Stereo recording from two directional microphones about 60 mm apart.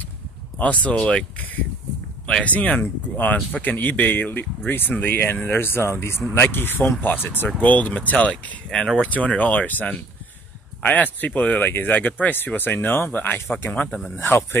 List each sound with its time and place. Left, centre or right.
0.6 s speech: left
2.2 s speech: left
8.6 s speech: centre
9.0 s speech: left